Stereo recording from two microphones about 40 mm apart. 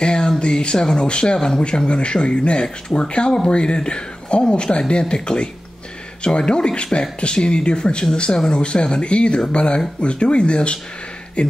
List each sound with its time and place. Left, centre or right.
0.0 s speech: left